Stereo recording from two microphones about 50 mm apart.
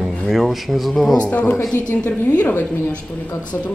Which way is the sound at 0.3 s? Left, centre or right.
Centre.